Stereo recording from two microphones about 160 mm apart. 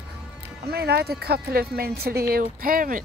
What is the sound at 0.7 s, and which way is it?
Speech, 90° right.